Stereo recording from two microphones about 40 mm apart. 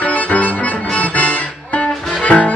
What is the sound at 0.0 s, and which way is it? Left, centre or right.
Accordion, left.